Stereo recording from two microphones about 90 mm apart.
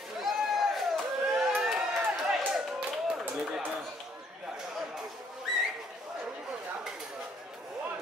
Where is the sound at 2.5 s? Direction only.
5° right (ahead or behind).